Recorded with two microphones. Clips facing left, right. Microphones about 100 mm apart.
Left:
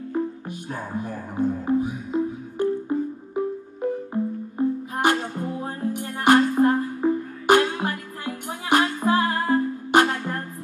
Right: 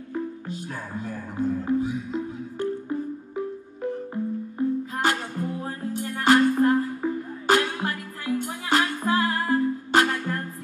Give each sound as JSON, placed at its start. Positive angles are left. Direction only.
{"t": 0.1, "sound": "speech", "side_deg": 20}
{"t": 1.8, "sound": "music", "side_deg": 15}